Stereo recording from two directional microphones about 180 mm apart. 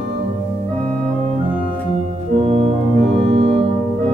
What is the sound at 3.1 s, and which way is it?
Organ, 35° right (ahead or behind).